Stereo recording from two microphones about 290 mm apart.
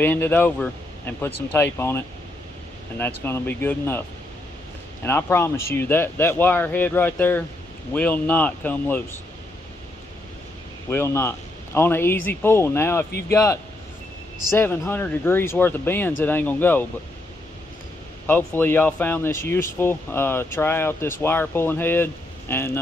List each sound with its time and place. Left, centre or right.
0.0 s speech: centre
5.0 s speech: centre
10.9 s speech: centre
18.2 s speech: centre